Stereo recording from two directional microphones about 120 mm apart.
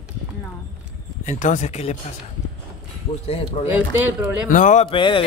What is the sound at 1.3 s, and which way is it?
Speech, 90° left.